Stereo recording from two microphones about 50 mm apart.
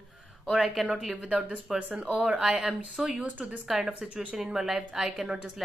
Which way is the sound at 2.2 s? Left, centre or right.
Centre.